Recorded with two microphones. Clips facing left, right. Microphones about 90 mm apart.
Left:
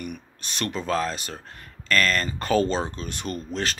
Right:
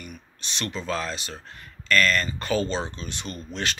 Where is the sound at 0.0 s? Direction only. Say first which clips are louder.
Left 6 dB; 50° left (ahead or behind).